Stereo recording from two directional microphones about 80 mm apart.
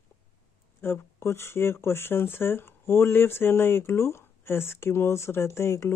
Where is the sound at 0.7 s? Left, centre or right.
Left.